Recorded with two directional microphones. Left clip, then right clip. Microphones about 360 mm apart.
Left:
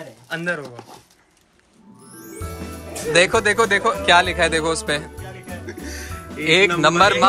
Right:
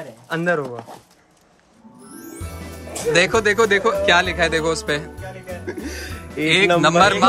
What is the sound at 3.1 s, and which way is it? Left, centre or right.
Speech, centre.